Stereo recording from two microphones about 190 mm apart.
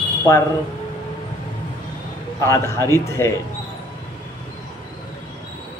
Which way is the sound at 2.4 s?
15° left (ahead or behind).